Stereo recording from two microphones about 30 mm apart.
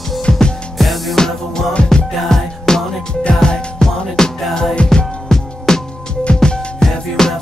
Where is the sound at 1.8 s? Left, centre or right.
Left.